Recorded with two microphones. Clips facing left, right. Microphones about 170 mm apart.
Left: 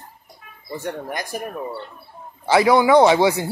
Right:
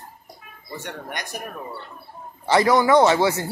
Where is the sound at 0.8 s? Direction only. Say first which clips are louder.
Left 6 dB; 35° left (ahead or behind).